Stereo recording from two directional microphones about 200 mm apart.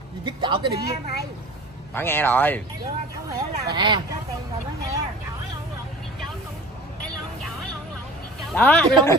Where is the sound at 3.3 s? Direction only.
20° right (ahead or behind).